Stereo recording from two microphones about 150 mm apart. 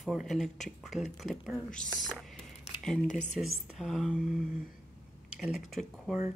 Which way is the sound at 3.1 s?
50° left (ahead or behind).